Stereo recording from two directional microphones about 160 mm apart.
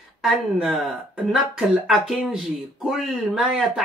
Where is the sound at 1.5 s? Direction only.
5° right (ahead or behind).